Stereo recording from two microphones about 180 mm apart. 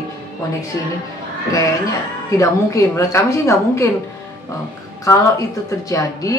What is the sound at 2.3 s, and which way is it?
Speech, 15° left (ahead or behind).